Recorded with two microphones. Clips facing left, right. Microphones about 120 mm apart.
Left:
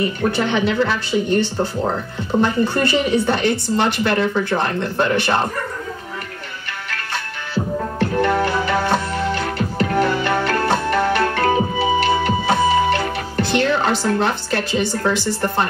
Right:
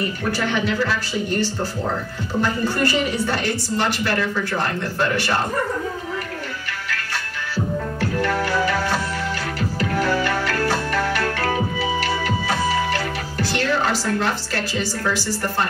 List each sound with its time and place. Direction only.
0.3 s speech: 20° left (ahead or behind)
7.5 s music: 25° left (ahead or behind)
15.0 s speech: 25° left (ahead or behind)